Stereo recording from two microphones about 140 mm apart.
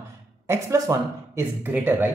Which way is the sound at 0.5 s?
20° right (ahead or behind).